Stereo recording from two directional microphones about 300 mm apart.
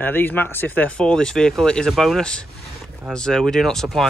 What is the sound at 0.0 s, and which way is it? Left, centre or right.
Speech, centre.